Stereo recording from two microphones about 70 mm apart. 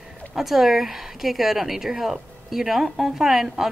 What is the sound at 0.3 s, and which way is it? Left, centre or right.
A woman's voice, centre.